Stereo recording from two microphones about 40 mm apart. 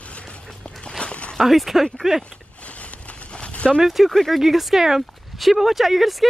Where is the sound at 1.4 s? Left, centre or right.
Centre.